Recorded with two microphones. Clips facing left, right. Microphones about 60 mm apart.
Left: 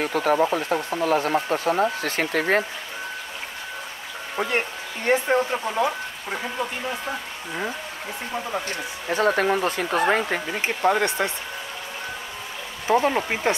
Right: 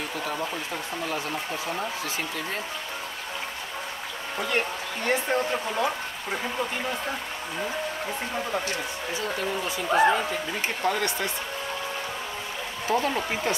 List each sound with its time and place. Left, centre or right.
0.0 s speech: left
4.4 s a man's voice: left
5.4 s speech: centre
8.6 s speech: left
10.6 s a man's voice: left
12.8 s a man's voice: left